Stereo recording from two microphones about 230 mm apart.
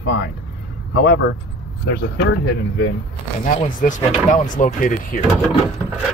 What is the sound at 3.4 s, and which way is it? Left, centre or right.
Speech, left.